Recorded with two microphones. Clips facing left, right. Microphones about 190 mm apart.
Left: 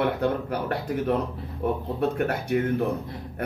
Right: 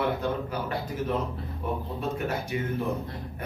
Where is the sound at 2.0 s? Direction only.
65° left (ahead or behind).